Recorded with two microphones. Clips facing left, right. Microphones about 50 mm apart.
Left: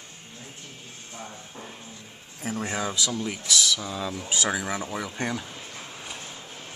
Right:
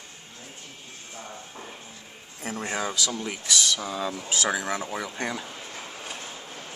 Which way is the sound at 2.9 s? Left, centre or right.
Centre.